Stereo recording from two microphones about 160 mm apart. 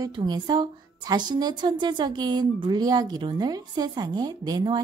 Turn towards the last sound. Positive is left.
turn(degrees=-25)  # may be behind; listen again after turning